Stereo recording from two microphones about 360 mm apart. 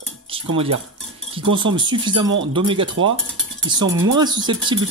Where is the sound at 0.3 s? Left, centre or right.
Centre.